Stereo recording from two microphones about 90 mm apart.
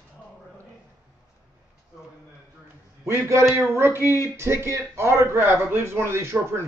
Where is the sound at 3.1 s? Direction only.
35° right (ahead or behind).